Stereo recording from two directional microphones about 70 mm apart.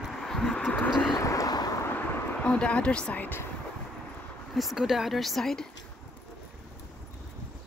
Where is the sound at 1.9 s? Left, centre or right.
Centre.